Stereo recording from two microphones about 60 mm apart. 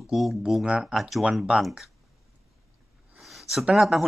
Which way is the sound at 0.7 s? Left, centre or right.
Centre.